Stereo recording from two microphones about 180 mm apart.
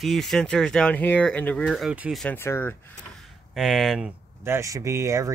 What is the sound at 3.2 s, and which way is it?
Speech, centre (ahead or behind).